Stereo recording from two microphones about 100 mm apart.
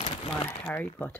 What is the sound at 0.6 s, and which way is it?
Speech, 15° left (ahead or behind).